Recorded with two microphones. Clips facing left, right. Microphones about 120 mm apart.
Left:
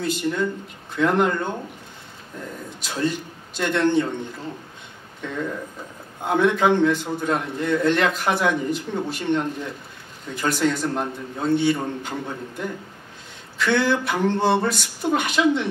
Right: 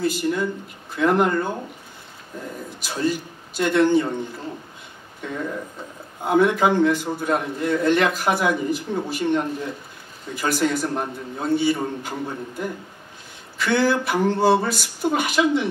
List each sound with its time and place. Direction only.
0.0 s a man's voice: 5° right (ahead or behind)
2.8 s a man's voice: 5° right (ahead or behind)
6.2 s a man's voice: 5° right (ahead or behind)